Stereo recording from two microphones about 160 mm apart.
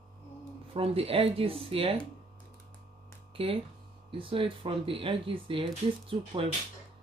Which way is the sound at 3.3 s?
35° right (ahead or behind).